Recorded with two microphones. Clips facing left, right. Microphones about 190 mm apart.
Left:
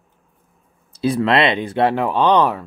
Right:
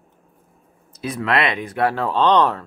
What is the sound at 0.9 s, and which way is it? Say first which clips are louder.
Speech: left 5 dB; 30° left (ahead or behind).